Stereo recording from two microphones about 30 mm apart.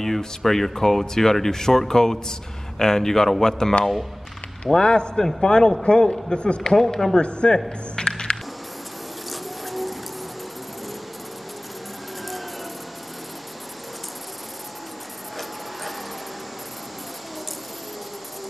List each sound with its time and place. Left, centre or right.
0.4 s speech: centre
4.7 s a man's voice: left
5.1 s a man's voice: centre
6.7 s speech: centre
7.2 s speech: left
7.9 s a sound: left
9.3 s a sound: centre